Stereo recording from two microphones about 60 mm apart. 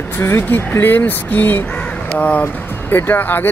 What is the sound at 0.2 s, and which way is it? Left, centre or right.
Speech, left.